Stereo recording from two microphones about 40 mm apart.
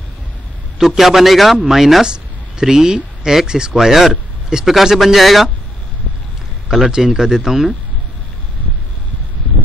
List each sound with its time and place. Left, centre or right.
0.7 s a man's voice: centre
4.8 s speech: centre
6.7 s a man's voice: centre